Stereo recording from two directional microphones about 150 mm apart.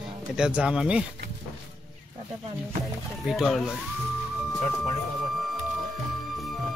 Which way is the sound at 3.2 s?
Centre (ahead or behind).